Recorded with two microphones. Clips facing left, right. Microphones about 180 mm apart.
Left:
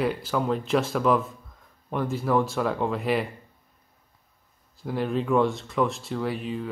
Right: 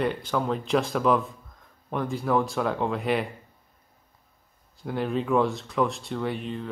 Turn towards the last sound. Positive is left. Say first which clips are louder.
# left 1 dB
turn(degrees=5)  # may be behind; listen again after turning